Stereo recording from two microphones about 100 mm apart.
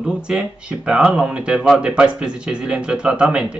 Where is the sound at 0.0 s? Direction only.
10° right (ahead or behind).